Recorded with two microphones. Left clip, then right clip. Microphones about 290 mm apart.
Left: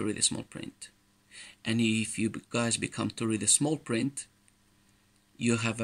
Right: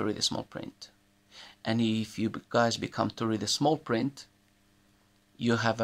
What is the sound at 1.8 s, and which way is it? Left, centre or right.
Speech, right.